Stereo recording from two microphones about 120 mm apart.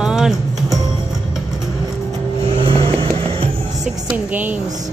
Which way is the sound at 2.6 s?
50° right (ahead or behind).